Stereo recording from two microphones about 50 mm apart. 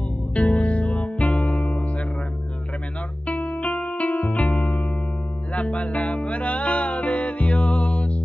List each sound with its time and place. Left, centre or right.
0.3 s music: left
3.3 s music: left